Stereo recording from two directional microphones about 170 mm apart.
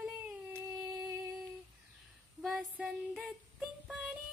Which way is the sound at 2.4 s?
Centre (ahead or behind).